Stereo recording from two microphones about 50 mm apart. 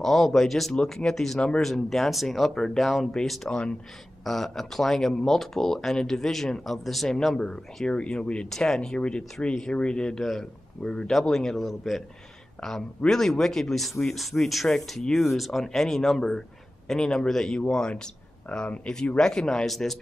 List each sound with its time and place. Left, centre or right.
0.0 s speech: centre
3.4 s speech: centre
4.2 s speech: centre; by 8.5 s left
8.5 s speech: centre
13.1 s speech: centre